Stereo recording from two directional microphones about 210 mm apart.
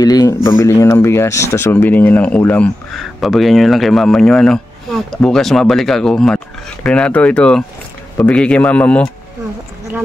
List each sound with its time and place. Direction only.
0.0 s speech: 20° left (ahead or behind)